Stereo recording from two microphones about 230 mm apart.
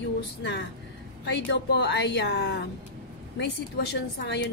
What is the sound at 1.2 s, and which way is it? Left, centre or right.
A woman's voice, left.